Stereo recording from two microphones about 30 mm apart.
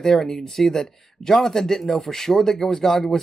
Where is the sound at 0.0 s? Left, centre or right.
Centre.